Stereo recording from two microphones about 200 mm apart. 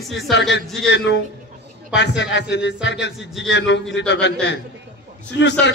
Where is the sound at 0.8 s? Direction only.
60° left (ahead or behind).